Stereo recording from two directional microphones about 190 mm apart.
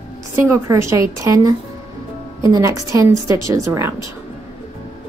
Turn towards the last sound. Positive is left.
turn(degrees=-15)  # may be behind; listen again after turning